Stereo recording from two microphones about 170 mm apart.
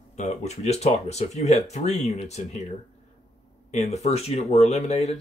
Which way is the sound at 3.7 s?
40° left (ahead or behind).